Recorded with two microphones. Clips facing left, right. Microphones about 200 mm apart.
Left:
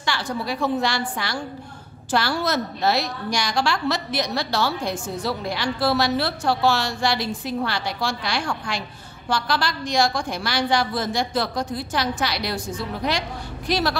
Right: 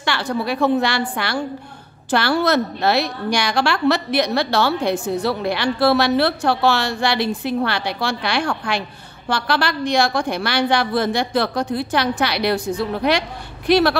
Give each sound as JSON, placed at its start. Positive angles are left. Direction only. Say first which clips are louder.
{"t": 0.0, "sound": "a woman's voice", "louder": "right 4 dB", "side_deg": -65}